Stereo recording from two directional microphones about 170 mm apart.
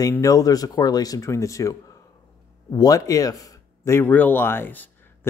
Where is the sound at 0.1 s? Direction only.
20° left (ahead or behind).